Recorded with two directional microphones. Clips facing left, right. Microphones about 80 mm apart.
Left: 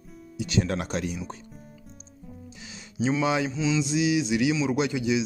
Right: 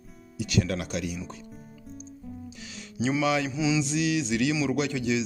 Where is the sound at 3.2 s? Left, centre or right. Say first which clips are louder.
Even; left.